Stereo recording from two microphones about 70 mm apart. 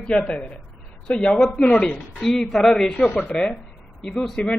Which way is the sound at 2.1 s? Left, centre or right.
Centre.